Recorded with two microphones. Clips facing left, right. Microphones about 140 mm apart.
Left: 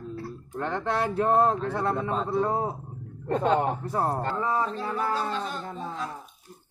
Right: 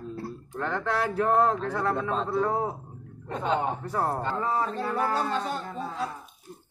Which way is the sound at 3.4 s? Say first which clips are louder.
Left 3 dB; 40° left (ahead or behind).